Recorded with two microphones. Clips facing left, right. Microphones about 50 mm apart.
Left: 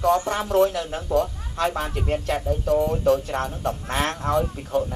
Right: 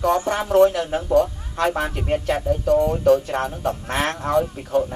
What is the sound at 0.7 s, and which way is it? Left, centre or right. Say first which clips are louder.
Speech: right 5 dB; right.